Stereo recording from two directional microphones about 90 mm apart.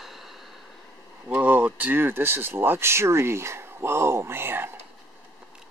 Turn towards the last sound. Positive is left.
turn(degrees=-25)  # may be behind; listen again after turning